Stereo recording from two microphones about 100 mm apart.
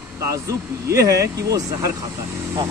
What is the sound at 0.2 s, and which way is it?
Speech, 30° right (ahead or behind).